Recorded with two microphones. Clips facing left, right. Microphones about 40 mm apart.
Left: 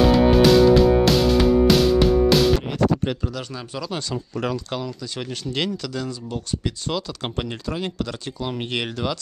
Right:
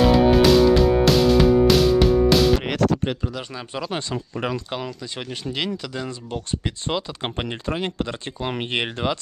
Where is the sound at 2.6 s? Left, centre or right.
Right.